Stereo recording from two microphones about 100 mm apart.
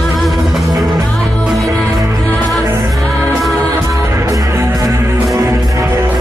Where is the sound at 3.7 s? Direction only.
30° right (ahead or behind).